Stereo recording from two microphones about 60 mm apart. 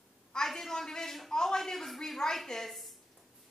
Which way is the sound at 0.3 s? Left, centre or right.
Centre.